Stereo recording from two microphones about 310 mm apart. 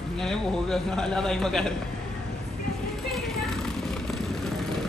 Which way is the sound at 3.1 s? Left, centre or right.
Centre.